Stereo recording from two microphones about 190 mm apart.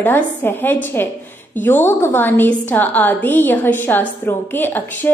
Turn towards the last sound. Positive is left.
turn(degrees=10)  # may be behind; listen again after turning